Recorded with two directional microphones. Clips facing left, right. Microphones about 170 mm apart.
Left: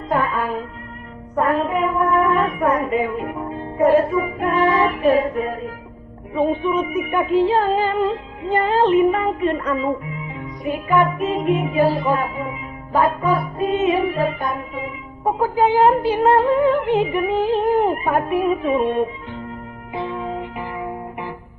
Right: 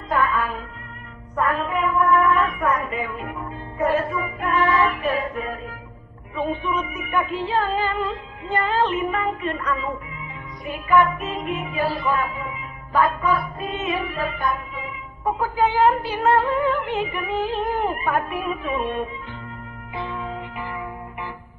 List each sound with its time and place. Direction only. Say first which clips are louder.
0.1 s music: left 2 dB; 30° left (ahead or behind)
1.3 s a woman's voice: left 4 dB; 30° left (ahead or behind)
6.8 s music: left 5 dB; 30° left (ahead or behind)
10.9 s music: left 1 dB; 25° left (ahead or behind)